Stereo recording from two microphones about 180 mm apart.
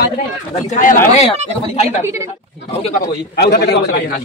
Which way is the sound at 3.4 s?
65° left (ahead or behind).